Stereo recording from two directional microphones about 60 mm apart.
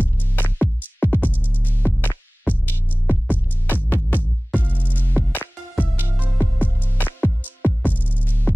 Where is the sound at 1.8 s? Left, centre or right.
Left.